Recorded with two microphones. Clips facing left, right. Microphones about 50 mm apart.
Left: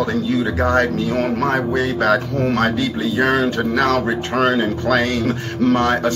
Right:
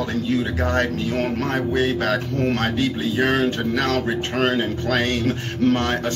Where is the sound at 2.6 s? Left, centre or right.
Right.